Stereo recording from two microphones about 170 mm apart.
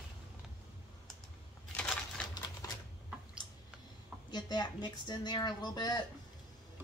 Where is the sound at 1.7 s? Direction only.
5° left (ahead or behind).